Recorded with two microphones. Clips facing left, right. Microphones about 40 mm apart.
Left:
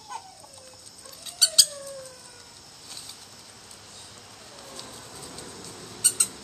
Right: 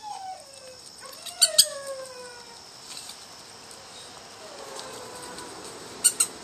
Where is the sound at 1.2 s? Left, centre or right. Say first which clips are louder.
Even; centre.